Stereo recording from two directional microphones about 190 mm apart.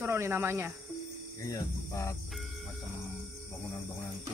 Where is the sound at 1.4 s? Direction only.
15° left (ahead or behind).